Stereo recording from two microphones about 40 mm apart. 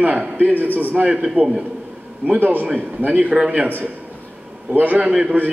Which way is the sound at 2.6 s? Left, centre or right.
Right.